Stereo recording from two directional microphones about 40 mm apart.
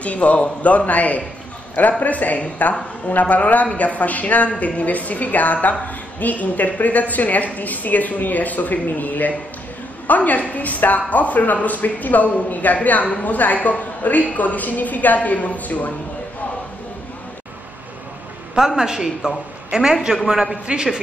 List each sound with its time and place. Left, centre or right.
0.0 s a man's voice: left
18.8 s a woman's voice: centre